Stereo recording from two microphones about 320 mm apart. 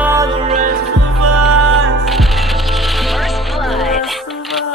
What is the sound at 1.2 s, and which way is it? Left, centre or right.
Music, right.